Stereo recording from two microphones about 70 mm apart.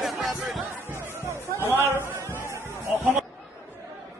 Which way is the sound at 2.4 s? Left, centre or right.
Right.